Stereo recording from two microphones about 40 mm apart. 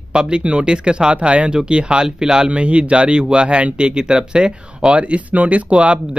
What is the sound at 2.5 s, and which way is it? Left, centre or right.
Speech, right.